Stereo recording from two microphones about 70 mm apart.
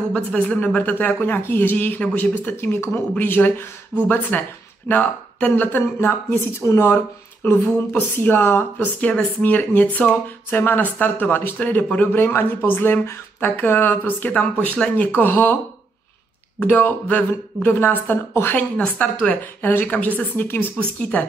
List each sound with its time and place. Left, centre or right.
0.1 s speech: centre
3.9 s speech: centre
5.9 s speech: left
7.4 s speech: left
16.5 s speech: left